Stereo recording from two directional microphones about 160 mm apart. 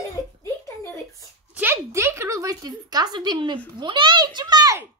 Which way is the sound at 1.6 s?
15° right (ahead or behind).